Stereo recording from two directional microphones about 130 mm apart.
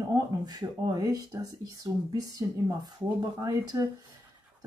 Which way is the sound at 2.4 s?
30° right (ahead or behind).